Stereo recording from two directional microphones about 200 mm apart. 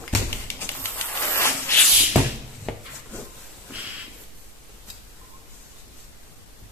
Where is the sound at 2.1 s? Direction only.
5° right (ahead or behind).